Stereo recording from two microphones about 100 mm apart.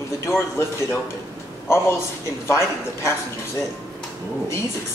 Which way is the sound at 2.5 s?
25° left (ahead or behind).